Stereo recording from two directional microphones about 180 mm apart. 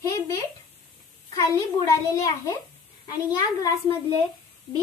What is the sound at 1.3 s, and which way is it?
A child's voice, 20° left (ahead or behind).